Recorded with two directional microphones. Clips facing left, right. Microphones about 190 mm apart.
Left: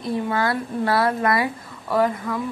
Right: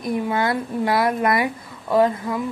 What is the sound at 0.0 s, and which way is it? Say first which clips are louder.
Speech: right 1 dB; 15° right (ahead or behind).